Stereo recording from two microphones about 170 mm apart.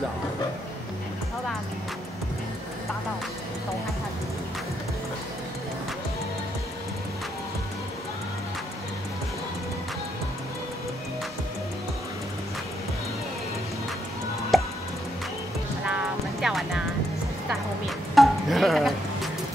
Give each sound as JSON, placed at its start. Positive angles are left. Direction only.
{"t": 14.5, "sound": "music", "side_deg": 0}
{"t": 15.8, "sound": "music", "side_deg": -5}
{"t": 17.5, "sound": "a sound", "side_deg": 0}